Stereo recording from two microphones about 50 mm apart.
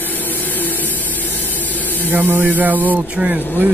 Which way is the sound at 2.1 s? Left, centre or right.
Right.